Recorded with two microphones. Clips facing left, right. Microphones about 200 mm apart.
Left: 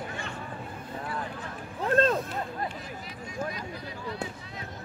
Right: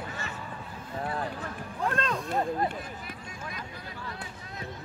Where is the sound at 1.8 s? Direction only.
40° left (ahead or behind).